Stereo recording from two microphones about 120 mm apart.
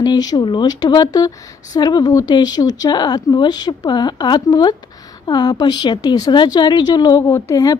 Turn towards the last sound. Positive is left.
turn(degrees=30)  # may be behind; listen again after turning